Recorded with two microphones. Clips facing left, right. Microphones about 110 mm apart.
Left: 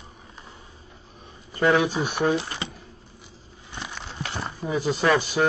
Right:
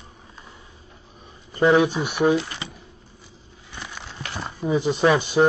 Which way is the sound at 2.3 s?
30° left (ahead or behind).